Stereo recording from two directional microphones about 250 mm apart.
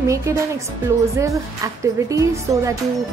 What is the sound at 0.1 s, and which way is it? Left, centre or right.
Music, centre.